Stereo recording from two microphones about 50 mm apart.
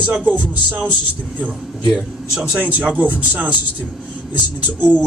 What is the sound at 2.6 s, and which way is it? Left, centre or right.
Speech, right.